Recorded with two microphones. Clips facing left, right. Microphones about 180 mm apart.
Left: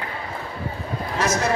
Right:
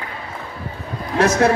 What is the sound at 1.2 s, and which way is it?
Speech, 60° right (ahead or behind).